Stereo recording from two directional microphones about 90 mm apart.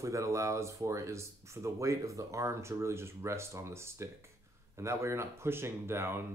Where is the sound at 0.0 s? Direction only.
35° right (ahead or behind).